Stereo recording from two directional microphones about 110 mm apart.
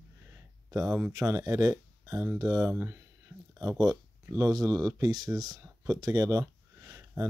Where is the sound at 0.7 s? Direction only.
30° right (ahead or behind).